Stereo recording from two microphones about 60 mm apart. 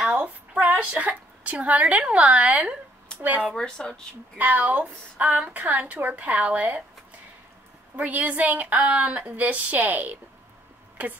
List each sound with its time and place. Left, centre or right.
0.0 s a sound: centre
0.7 s a woman's voice: right
3.5 s speech: centre
4.4 s a woman's voice: right
7.9 s a woman's voice: right